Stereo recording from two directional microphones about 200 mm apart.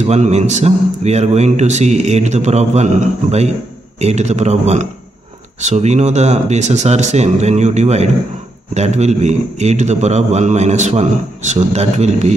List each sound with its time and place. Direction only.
0.0 s a man's voice: 35° right (ahead or behind)